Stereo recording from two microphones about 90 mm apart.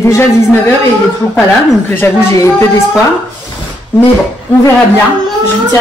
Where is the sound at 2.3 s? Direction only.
35° left (ahead or behind).